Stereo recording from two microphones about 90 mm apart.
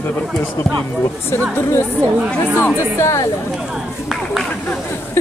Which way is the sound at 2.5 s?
30° left (ahead or behind).